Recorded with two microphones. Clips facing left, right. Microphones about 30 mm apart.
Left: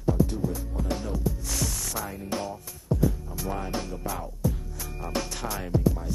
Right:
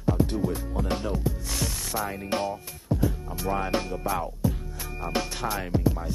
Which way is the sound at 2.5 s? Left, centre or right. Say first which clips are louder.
Right 1 dB; right.